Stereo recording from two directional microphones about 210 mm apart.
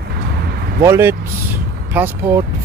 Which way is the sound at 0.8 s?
10° right (ahead or behind).